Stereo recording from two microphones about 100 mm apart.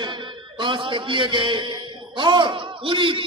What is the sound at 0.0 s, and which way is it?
A man's voice, 50° right (ahead or behind).